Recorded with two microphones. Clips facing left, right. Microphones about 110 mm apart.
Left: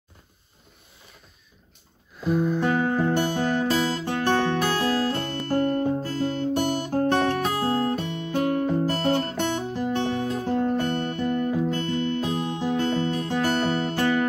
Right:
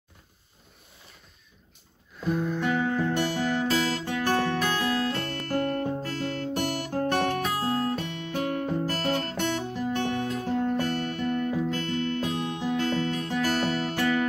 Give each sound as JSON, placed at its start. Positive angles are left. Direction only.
{"t": 2.3, "sound": "music", "side_deg": 15}
{"t": 2.6, "sound": "music", "side_deg": 40}
{"t": 5.5, "sound": "guitar", "side_deg": 30}